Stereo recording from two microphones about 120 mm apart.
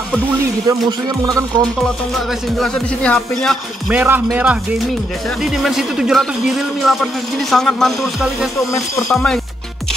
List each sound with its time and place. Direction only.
0.7 s speech: 30° right (ahead or behind)
1.8 s speech: centre (ahead or behind)
3.9 s a man's voice: 15° right (ahead or behind)
5.4 s speech: 5° right (ahead or behind)